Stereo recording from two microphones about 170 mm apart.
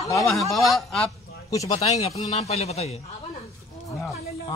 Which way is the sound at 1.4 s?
20° left (ahead or behind).